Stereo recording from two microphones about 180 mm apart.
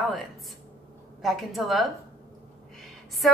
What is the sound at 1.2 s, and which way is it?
A woman's voice, centre (ahead or behind).